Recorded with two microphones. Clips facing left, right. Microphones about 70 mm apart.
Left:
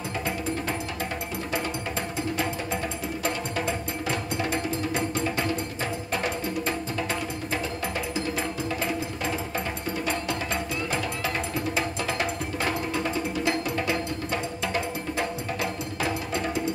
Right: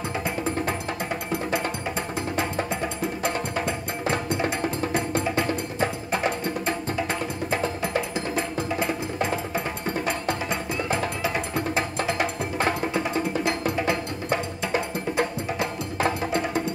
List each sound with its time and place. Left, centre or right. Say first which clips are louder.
8.7 s music: right 3 dB; centre
15.1 s music: right 4 dB; right